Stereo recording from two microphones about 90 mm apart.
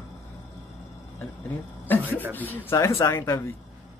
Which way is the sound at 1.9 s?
20° left (ahead or behind).